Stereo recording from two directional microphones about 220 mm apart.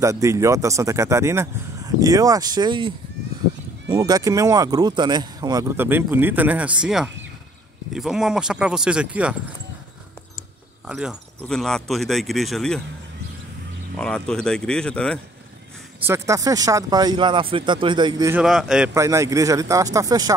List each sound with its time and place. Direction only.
0.0 s speech: 15° right (ahead or behind)
3.9 s speech: 15° right (ahead or behind)
10.9 s speech: centre (ahead or behind)
13.9 s speech: 5° left (ahead or behind)
16.0 s speech: 10° right (ahead or behind)
18.4 s speech: centre (ahead or behind)
18.9 s speech: 15° right (ahead or behind)